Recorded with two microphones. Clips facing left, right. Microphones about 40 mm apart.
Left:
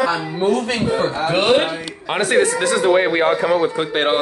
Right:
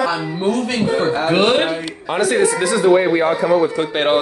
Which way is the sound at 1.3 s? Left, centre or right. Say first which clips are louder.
Even; centre.